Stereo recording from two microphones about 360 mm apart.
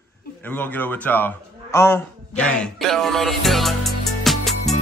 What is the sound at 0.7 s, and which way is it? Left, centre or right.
A man's voice, centre.